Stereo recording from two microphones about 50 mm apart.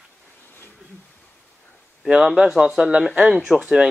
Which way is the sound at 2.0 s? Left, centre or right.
Centre.